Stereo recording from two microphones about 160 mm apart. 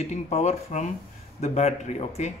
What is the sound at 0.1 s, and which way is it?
A man's voice, 45° left (ahead or behind).